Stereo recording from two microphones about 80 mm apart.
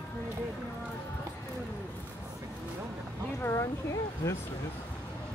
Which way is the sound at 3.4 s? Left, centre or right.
Left.